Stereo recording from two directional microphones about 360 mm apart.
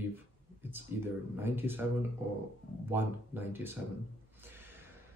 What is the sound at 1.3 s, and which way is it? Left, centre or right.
Speech, centre.